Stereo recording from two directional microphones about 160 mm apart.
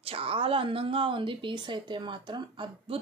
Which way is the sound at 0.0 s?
35° right (ahead or behind).